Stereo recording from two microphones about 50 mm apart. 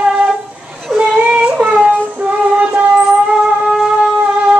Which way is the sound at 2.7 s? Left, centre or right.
Right.